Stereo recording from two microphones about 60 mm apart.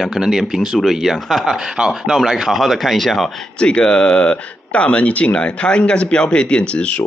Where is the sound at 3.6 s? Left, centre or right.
Centre.